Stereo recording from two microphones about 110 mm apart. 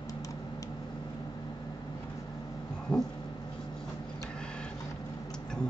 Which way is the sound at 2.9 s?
10° left (ahead or behind).